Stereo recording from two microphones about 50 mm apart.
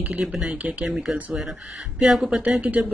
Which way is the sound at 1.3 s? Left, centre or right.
Centre.